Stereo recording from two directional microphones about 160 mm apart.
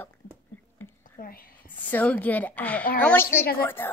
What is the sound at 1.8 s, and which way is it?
Speech, 10° left (ahead or behind).